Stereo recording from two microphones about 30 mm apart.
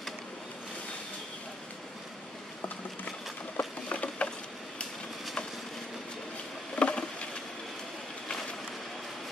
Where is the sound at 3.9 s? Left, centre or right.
Left.